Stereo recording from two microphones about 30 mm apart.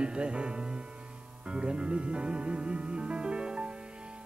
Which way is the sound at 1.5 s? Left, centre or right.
Right.